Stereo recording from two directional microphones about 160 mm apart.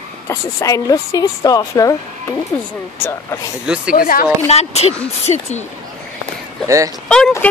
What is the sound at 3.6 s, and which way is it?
Speech, 5° right (ahead or behind).